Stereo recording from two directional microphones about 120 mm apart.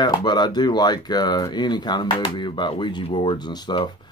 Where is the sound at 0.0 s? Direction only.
35° left (ahead or behind).